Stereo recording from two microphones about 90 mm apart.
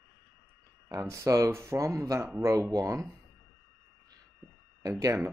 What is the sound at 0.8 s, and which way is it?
Speech, 35° right (ahead or behind).